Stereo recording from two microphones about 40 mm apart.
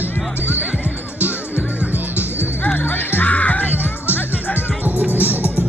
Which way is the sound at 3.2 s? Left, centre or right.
Left.